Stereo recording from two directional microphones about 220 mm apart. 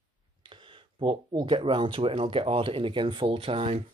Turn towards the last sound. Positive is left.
turn(degrees=-25)  # may be behind; listen again after turning